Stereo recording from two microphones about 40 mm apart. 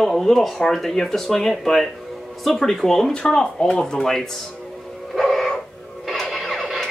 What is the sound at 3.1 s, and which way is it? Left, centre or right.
Speech, left.